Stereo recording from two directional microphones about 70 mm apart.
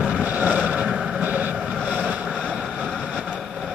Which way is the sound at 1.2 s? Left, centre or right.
Right.